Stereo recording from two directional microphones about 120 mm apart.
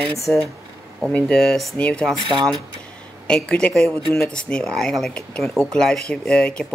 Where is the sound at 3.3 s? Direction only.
5° left (ahead or behind).